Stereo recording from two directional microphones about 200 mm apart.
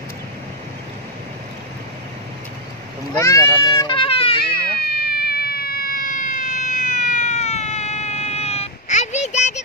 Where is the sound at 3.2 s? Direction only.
15° left (ahead or behind).